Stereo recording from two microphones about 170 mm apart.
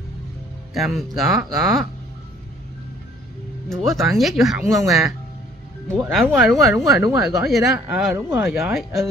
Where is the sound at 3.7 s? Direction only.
Centre (ahead or behind).